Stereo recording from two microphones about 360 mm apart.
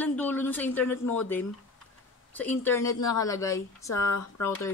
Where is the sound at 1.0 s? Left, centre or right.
Left.